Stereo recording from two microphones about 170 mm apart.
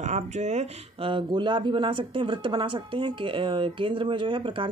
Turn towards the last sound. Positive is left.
turn(degrees=-30)  # may be behind; listen again after turning